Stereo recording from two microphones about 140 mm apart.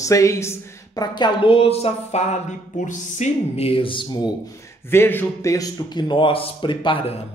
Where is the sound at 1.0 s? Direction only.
30° left (ahead or behind).